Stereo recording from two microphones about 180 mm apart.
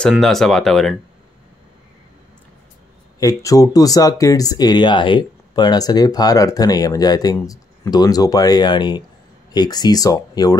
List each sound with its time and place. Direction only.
0.0 s speech: centre (ahead or behind)
3.2 s speech: 20° left (ahead or behind)